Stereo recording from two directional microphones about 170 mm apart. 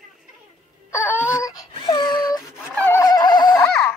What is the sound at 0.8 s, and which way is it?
Wail, 15° left (ahead or behind).